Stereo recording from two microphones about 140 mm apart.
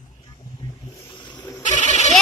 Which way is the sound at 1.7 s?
55° left (ahead or behind).